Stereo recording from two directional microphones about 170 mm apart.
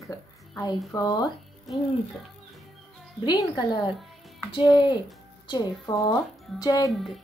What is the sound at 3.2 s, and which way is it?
A child's voice, 25° left (ahead or behind).